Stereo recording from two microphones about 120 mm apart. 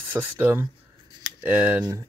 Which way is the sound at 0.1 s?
15° right (ahead or behind).